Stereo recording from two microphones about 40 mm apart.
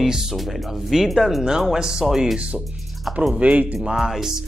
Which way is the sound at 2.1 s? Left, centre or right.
Centre.